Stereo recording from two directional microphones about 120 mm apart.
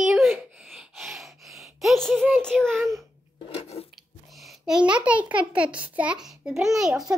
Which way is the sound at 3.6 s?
60° left (ahead or behind).